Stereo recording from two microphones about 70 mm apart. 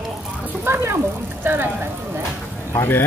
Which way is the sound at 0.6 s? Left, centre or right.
Right.